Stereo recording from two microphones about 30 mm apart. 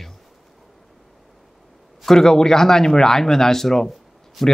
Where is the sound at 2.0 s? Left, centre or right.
Centre.